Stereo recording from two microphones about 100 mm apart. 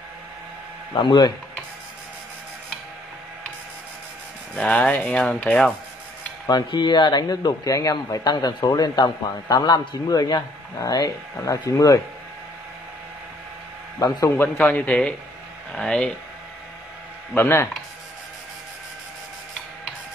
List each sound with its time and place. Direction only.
0.9 s speech: 45° left (ahead or behind)
4.6 s speech: 10° left (ahead or behind)
6.4 s a man's voice: 45° left (ahead or behind)
13.9 s a man's voice: 35° left (ahead or behind)
14.3 s speech: 20° left (ahead or behind)
17.3 s speech: 20° left (ahead or behind)